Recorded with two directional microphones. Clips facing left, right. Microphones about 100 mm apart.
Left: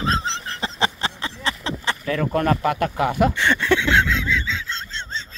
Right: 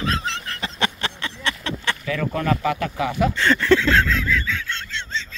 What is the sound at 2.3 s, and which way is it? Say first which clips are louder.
A man's voice: left 2 dB; 45° left (ahead or behind).